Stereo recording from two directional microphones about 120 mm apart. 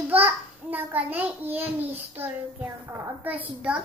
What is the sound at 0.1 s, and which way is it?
A child's voice, 15° right (ahead or behind).